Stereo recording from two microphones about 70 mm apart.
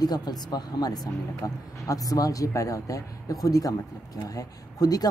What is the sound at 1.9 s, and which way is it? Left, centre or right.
Speech, left.